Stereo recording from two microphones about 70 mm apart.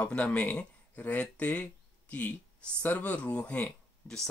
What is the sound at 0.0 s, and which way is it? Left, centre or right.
Speech, centre.